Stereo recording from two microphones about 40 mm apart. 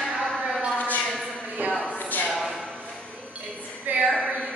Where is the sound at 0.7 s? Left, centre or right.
Left.